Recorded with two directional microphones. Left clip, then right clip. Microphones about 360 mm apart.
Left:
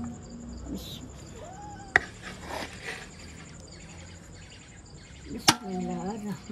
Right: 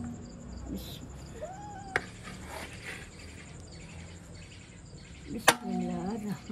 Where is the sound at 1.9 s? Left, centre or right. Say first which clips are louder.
Left 9 dB; left.